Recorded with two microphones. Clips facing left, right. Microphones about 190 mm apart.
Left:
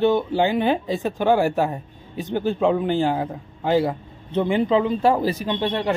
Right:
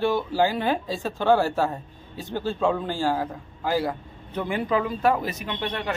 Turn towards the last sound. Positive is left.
turn(degrees=30)  # may be behind; listen again after turning